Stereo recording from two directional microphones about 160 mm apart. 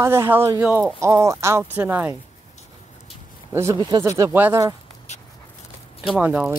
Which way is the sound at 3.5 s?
15° right (ahead or behind).